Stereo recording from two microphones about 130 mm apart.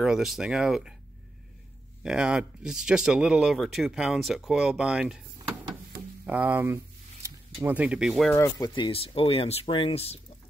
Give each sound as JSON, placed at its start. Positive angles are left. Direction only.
{"t": 0.0, "sound": "speech", "side_deg": -5}
{"t": 2.0, "sound": "speech", "side_deg": -5}
{"t": 6.2, "sound": "speech", "side_deg": -10}
{"t": 8.3, "sound": "speech", "side_deg": 20}
{"t": 8.6, "sound": "speech", "side_deg": 35}